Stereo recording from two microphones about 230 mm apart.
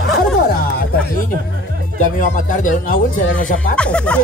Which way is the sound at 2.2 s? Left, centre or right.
Left.